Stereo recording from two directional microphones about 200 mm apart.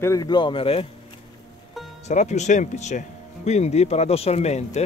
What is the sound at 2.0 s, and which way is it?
Speech, 35° left (ahead or behind).